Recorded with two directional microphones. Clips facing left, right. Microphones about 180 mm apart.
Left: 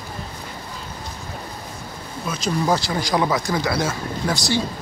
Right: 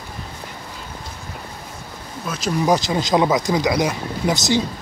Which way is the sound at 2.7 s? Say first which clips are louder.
Right 5 dB; 20° right (ahead or behind).